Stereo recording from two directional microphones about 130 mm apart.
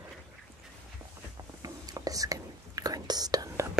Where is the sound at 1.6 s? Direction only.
25° right (ahead or behind).